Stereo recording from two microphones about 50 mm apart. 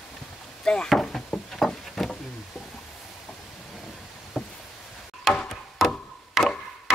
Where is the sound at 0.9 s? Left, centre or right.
Centre.